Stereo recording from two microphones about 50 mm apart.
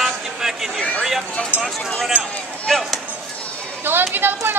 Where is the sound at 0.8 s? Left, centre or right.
Left.